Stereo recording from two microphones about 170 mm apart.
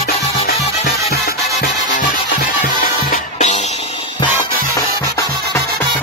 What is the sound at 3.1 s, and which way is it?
Music, 40° left (ahead or behind).